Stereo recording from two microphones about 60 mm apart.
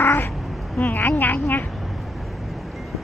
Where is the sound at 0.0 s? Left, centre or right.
Left.